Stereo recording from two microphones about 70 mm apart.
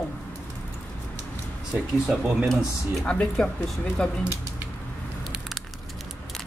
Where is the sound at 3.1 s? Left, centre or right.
Centre.